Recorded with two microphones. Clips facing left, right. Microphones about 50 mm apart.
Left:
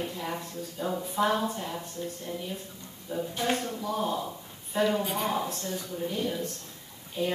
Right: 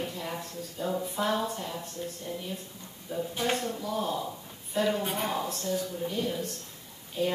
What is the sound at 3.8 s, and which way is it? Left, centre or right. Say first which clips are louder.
Speech: left 1 dB; centre.